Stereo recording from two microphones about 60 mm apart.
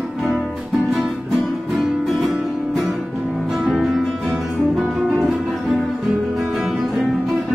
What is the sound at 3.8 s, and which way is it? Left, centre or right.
Music, centre.